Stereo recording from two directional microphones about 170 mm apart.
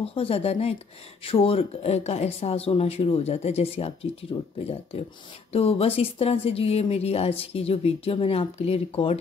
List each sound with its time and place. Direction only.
0.0 s speech: 35° left (ahead or behind)